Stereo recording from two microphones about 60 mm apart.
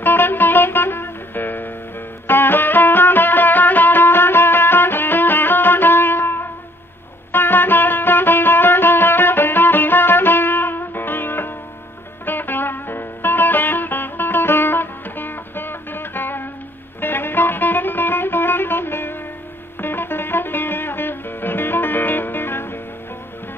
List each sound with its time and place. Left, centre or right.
0.0 s music: left